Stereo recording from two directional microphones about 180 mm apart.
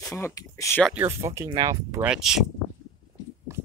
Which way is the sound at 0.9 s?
15° right (ahead or behind).